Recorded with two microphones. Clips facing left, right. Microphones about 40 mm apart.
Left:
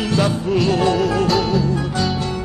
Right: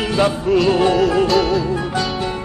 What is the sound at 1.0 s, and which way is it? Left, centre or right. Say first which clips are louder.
Music: right 3 dB; centre.